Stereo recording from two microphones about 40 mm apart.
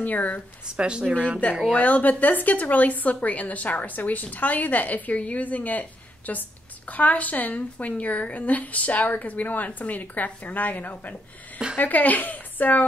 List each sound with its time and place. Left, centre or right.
0.0 s speech: left
0.7 s speech: right
1.4 s speech: left